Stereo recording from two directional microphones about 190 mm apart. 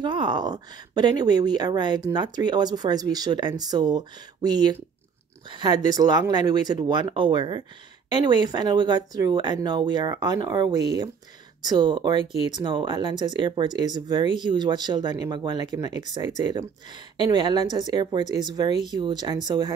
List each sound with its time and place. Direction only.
0.0 s speech: 25° right (ahead or behind)